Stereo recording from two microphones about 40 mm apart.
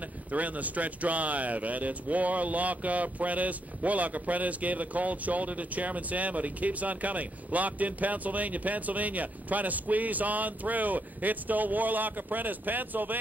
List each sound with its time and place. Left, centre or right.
0.3 s speech: right